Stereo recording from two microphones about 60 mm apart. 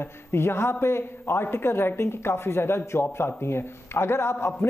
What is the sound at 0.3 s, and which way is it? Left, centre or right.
Speech, left.